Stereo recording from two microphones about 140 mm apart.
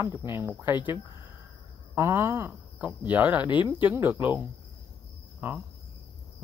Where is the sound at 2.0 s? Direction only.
20° right (ahead or behind).